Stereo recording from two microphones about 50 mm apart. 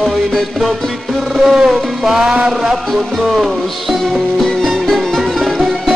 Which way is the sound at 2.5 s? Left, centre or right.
Centre.